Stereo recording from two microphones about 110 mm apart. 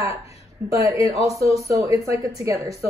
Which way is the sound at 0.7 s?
30° right (ahead or behind).